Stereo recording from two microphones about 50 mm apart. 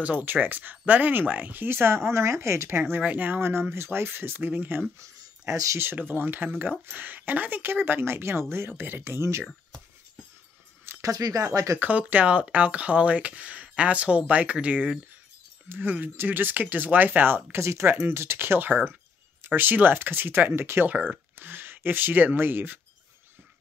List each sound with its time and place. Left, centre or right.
0.0 s speech: right
3.0 s speech: right
3.3 s speech: right
6.0 s speech: right
9.0 s speech: right
10.9 s a sound: right
11.5 s speech: right
11.8 s speech: right
15.7 s speech: right
17.5 s speech: right
17.8 s speech: right